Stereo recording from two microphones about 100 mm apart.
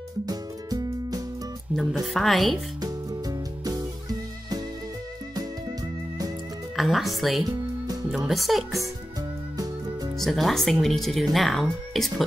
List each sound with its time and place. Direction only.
0.3 s music: 40° right (ahead or behind)
1.8 s speech: centre (ahead or behind)
2.8 s music: 40° right (ahead or behind)
6.8 s speech: centre (ahead or behind)
7.4 s music: 40° right (ahead or behind)
8.1 s speech: centre (ahead or behind)
10.1 s speech: centre (ahead or behind)